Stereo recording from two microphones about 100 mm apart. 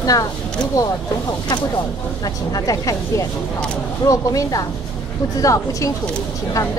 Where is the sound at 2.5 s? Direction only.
35° left (ahead or behind).